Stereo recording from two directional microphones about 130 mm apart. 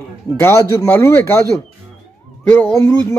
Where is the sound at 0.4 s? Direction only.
25° left (ahead or behind).